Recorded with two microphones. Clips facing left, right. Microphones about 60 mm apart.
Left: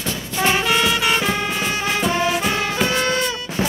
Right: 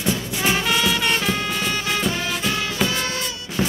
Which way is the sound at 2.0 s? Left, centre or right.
Left.